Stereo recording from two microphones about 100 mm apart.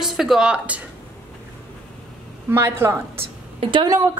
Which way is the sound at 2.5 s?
25° right (ahead or behind).